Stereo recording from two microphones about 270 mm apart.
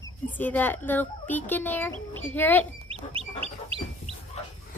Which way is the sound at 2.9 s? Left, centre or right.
Right.